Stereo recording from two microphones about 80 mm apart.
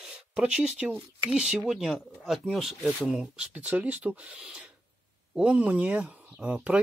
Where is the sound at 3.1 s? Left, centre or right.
Centre.